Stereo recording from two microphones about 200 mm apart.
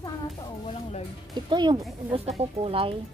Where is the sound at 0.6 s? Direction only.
30° left (ahead or behind).